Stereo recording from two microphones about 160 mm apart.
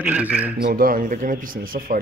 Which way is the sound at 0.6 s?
65° right (ahead or behind).